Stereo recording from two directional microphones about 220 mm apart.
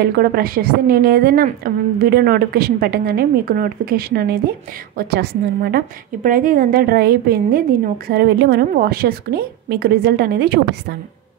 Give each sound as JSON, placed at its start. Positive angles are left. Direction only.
{"t": 0.0, "sound": "a woman's voice", "side_deg": -45}